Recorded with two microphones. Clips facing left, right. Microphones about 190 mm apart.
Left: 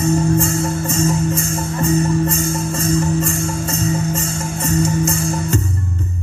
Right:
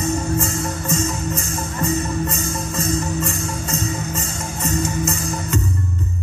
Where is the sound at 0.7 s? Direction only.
35° right (ahead or behind).